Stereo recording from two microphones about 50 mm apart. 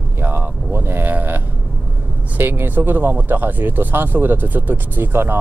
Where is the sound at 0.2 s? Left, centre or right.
Right.